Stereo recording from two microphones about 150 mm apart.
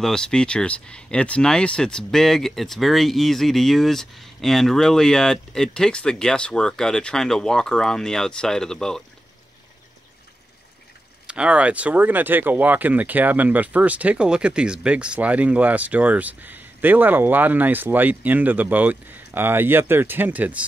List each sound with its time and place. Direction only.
0.0 s speech: 5° left (ahead or behind)
11.2 s speech: 5° right (ahead or behind)